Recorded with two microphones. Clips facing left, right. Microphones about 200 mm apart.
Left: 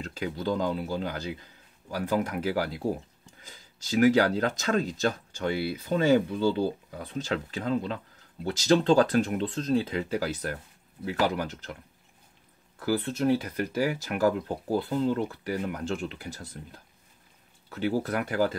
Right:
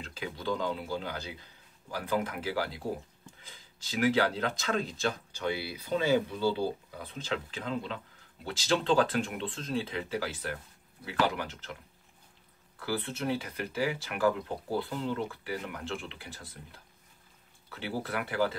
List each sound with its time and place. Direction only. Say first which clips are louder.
0.0 s speech: left 6 dB; 45° left (ahead or behind)
12.7 s speech: left 6 dB; 40° left (ahead or behind)